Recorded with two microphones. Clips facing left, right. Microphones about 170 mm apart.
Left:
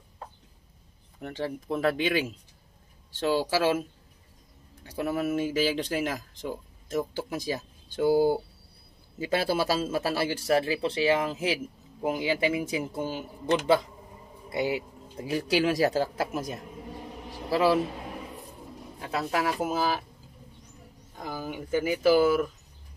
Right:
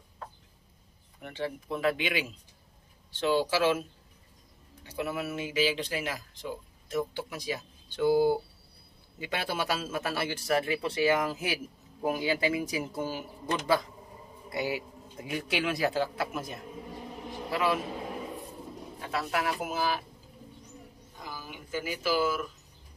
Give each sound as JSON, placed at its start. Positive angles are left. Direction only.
{"t": 1.2, "sound": "a man's voice", "side_deg": 40}
{"t": 4.8, "sound": "speech", "side_deg": 45}
{"t": 9.2, "sound": "a man's voice", "side_deg": 35}
{"t": 18.9, "sound": "speech", "side_deg": 35}
{"t": 21.2, "sound": "speech", "side_deg": 50}